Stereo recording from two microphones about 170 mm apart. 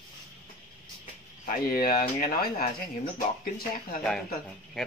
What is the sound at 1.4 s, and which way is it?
Speech, 60° left (ahead or behind).